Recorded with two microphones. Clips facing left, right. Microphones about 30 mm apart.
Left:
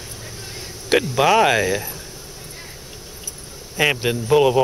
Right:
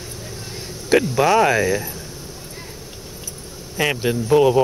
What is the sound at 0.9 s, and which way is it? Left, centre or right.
Speech, centre.